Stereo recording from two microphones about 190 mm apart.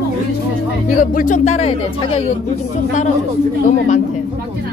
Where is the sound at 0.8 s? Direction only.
45° left (ahead or behind).